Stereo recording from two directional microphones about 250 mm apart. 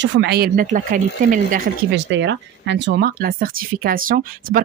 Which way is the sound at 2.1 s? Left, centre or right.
Right.